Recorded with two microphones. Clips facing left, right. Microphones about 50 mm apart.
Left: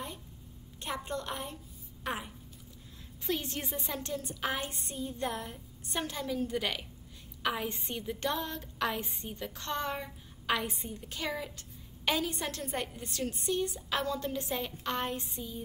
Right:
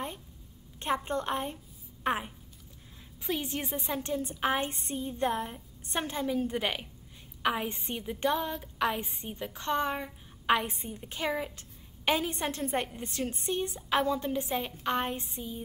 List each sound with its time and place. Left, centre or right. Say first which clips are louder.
0.7 s a woman's voice: right 6 dB; right
3.3 s a woman's voice: right 2 dB; centre